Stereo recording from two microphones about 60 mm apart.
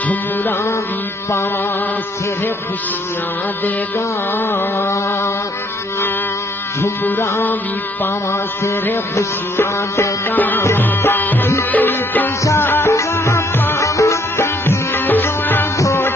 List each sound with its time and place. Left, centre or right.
4.5 s a sound: left
7.1 s music: left
9.1 s music: left
10.3 s music: left
12.9 s music: left
14.3 s music: left
15.0 s music: left